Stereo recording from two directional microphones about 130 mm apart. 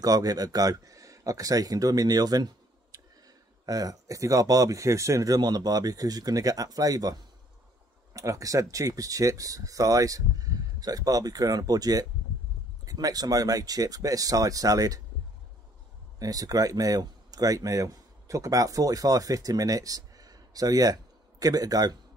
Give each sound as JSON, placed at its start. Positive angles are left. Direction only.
{"t": 0.0, "sound": "speech", "side_deg": -30}
{"t": 16.2, "sound": "speech", "side_deg": -25}